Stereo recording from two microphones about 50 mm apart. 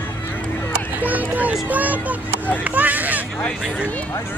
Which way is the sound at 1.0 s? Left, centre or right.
Right.